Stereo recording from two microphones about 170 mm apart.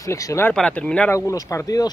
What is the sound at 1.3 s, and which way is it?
Speech, 20° left (ahead or behind).